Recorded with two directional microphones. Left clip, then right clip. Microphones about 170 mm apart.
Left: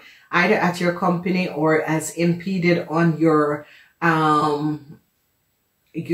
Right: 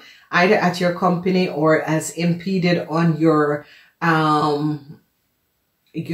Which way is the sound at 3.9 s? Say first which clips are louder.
Even; 30° right (ahead or behind).